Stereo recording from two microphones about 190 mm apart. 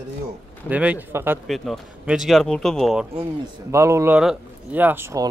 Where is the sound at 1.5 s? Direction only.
Centre (ahead or behind).